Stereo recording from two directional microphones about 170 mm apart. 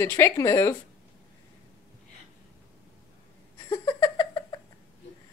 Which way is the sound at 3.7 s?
20° left (ahead or behind).